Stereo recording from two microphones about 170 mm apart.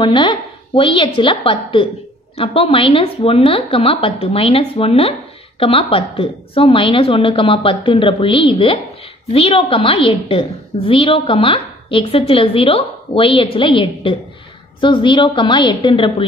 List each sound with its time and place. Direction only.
0.0 s a woman's voice: 30° left (ahead or behind)